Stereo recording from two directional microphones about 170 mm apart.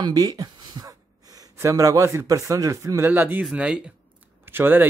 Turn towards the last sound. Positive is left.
turn(degrees=-10)  # may be behind; listen again after turning